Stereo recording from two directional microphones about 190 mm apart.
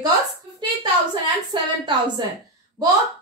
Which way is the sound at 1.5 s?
25° right (ahead or behind).